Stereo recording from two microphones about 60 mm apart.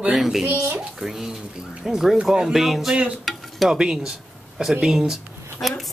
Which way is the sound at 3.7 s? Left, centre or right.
Centre.